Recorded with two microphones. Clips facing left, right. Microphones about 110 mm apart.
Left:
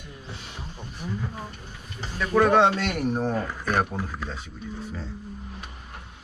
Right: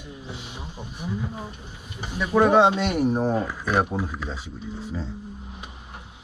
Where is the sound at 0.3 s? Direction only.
15° right (ahead or behind).